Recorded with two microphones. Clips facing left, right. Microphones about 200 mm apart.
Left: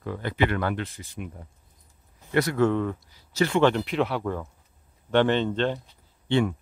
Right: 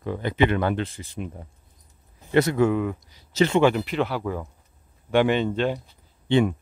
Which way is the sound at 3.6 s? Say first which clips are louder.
Right 1 dB; 5° right (ahead or behind).